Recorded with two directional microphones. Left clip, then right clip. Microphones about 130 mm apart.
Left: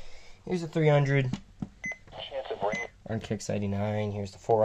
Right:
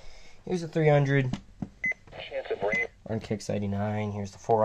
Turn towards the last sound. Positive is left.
turn(degrees=30)  # may be behind; listen again after turning